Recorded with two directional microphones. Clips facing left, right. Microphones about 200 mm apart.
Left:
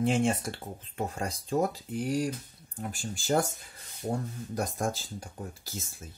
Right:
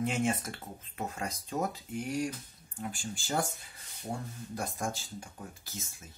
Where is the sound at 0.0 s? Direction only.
30° left (ahead or behind).